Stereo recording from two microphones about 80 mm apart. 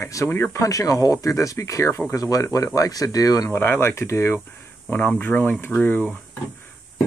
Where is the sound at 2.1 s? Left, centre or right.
Left.